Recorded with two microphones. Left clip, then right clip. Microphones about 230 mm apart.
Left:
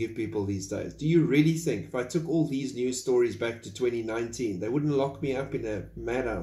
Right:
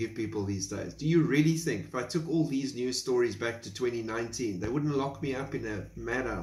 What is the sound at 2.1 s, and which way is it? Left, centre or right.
Speech, right.